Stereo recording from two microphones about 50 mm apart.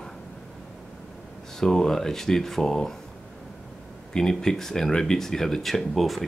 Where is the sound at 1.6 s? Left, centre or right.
Centre.